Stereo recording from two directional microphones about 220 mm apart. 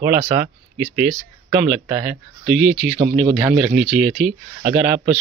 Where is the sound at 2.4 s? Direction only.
Centre (ahead or behind).